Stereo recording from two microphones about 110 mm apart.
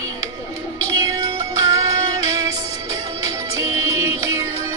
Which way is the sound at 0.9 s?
30° right (ahead or behind).